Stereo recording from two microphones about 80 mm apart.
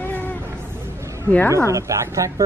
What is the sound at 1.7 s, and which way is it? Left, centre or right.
Speech, right.